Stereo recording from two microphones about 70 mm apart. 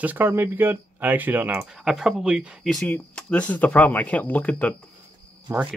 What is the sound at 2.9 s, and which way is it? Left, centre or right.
Speech, centre.